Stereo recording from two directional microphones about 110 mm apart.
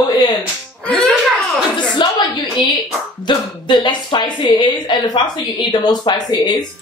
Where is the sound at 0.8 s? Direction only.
10° left (ahead or behind).